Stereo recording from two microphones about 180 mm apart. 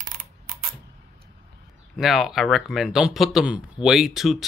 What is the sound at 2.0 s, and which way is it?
Speech, centre (ahead or behind).